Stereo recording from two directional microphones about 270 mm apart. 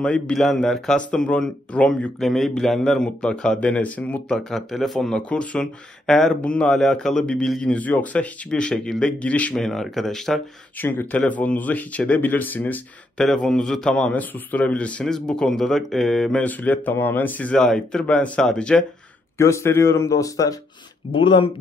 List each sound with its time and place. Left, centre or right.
0.0 s a man's voice: centre